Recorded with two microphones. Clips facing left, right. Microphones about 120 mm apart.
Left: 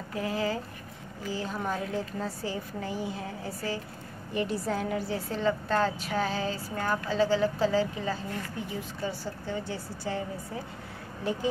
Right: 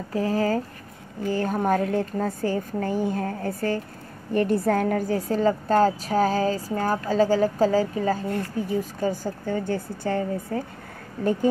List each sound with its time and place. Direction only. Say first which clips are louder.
0.1 s speech: right 7 dB; 40° right (ahead or behind)
1.2 s a woman's voice: right 9 dB; 55° right (ahead or behind)